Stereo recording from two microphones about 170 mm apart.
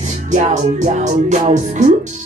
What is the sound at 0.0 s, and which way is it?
Music, 45° right (ahead or behind).